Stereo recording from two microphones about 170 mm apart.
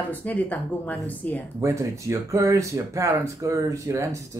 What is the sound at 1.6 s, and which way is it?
Speech, 15° right (ahead or behind).